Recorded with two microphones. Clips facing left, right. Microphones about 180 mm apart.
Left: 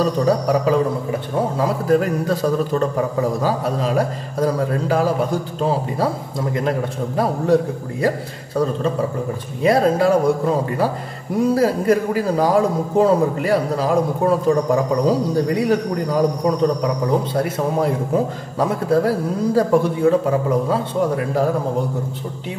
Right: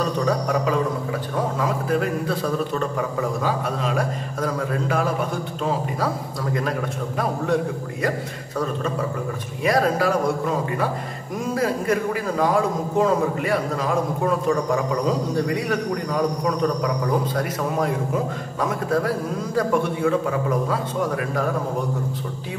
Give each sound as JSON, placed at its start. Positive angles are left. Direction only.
{"t": 0.0, "sound": "a man's voice", "side_deg": 35}
{"t": 9.6, "sound": "speech", "side_deg": 25}
{"t": 11.3, "sound": "a man's voice", "side_deg": 35}